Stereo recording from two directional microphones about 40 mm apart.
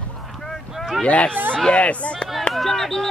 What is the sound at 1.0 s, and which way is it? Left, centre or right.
Speech, left.